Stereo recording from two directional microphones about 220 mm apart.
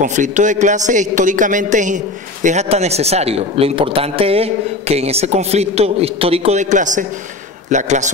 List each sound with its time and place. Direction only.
0.0 s a man's voice: 35° right (ahead or behind)